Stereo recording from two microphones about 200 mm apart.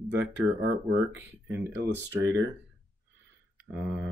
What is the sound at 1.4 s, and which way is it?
Speech, 15° right (ahead or behind).